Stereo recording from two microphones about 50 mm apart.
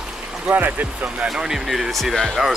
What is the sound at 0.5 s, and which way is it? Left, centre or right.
Speech, right.